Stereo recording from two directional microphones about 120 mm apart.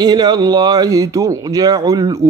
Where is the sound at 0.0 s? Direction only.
35° right (ahead or behind).